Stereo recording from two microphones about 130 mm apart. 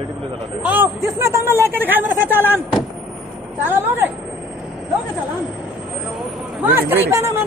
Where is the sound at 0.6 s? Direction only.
15° right (ahead or behind).